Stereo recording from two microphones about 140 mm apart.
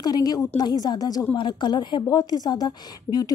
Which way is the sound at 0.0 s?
30° left (ahead or behind).